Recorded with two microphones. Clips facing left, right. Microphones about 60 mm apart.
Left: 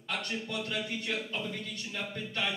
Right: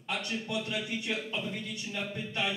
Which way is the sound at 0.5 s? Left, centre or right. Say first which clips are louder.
Right 2 dB; centre.